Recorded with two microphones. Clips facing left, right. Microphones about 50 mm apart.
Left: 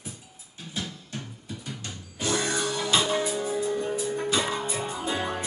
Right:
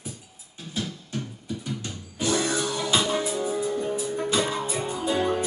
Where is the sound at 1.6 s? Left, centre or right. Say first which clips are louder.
Right 5 dB; centre.